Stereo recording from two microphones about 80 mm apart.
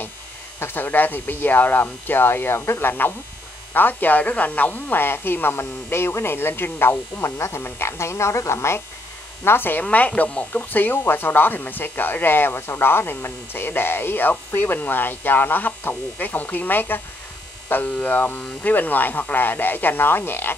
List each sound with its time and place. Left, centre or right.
0.6 s speech: left